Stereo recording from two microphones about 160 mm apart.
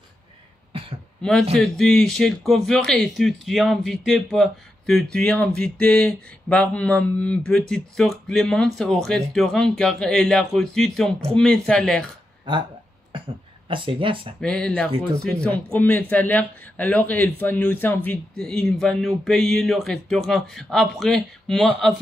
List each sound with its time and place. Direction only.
1.5 s speech: 5° left (ahead or behind)
13.7 s speech: 30° right (ahead or behind)
14.4 s speech: 5° left (ahead or behind)